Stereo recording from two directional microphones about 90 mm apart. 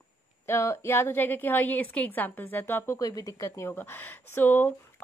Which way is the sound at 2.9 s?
40° left (ahead or behind).